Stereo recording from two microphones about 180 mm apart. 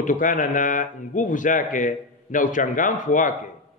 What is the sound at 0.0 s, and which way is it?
A man's voice, 45° left (ahead or behind).